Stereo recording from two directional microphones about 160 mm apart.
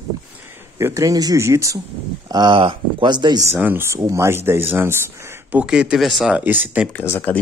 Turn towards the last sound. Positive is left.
turn(degrees=10)  # may be behind; listen again after turning